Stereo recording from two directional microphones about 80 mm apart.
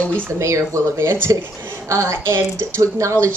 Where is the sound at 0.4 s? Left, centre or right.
Right.